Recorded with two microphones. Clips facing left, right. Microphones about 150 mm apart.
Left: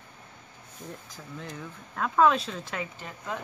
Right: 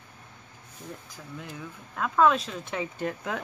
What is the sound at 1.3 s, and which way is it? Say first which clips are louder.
Speech: even; 5° right (ahead or behind).